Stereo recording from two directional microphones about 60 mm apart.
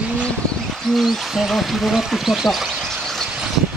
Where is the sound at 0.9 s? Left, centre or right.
Centre.